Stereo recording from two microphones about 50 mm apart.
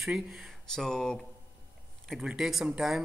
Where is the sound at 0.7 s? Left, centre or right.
Centre.